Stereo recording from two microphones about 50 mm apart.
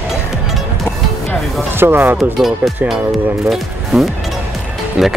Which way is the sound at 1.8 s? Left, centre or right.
Right.